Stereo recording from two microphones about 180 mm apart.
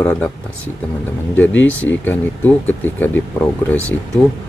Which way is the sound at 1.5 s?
90° left.